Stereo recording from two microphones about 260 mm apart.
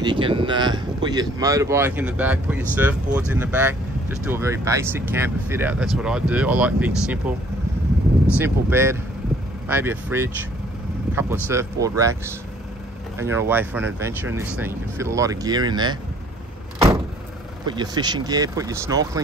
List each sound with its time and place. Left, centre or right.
0.0 s speech: centre
8.4 s speech: centre
11.4 s speech: centre
13.2 s speech: centre
16.7 s vehicle: centre
17.6 s speech: centre